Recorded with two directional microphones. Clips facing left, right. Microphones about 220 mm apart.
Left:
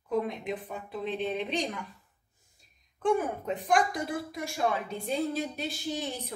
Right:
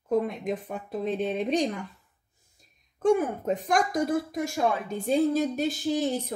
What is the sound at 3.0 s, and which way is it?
Speech, 45° right (ahead or behind).